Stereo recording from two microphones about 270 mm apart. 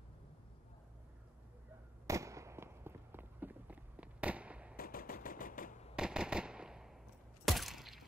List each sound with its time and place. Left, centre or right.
2.0 s fireworks: centre
4.7 s machine gun: left
5.9 s fireworks: centre
7.4 s a sound: centre